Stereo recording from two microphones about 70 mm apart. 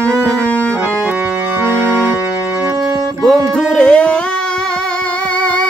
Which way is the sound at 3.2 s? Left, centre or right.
Centre.